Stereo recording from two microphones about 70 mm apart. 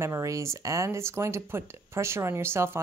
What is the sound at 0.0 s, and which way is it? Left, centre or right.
Speech, right.